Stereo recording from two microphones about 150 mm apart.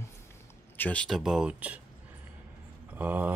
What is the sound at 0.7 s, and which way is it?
Speech, 10° left (ahead or behind).